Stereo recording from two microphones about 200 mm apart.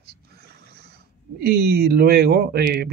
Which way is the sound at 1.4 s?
50° right (ahead or behind).